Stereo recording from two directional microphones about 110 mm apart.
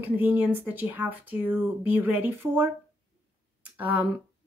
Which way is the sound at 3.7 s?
15° right (ahead or behind).